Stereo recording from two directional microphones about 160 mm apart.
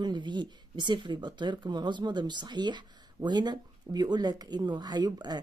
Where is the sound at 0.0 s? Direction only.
30° right (ahead or behind).